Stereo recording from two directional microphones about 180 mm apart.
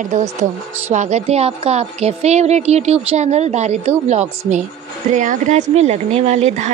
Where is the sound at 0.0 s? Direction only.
45° right (ahead or behind).